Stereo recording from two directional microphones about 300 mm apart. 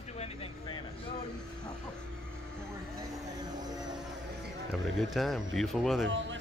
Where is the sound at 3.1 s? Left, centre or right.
Centre.